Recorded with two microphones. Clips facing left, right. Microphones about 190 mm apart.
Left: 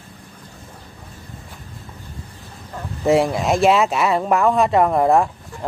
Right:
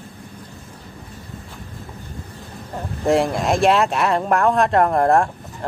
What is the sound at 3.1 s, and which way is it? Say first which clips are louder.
Speech: left 1 dB; centre (ahead or behind).